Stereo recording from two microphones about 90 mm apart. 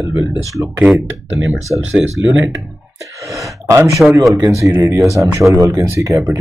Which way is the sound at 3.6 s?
30° right (ahead or behind).